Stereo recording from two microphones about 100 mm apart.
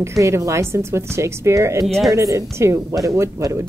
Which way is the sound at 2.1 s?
30° right (ahead or behind).